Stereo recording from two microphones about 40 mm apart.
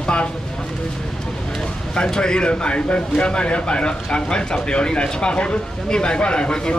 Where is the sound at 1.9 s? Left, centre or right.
Left.